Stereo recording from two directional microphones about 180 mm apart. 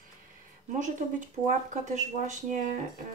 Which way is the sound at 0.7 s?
45° right (ahead or behind).